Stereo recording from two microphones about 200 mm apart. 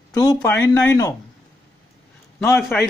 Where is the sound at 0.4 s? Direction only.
10° left (ahead or behind).